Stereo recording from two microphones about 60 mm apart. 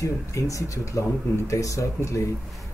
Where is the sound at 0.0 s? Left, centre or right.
Left.